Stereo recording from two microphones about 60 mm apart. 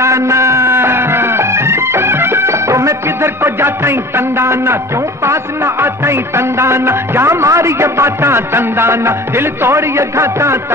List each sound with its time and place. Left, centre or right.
0.0 s music: right